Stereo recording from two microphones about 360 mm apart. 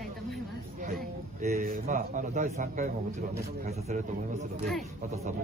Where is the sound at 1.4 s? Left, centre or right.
Right.